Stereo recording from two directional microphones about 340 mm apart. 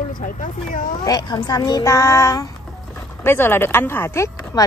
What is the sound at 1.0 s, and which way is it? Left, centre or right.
Speech, centre.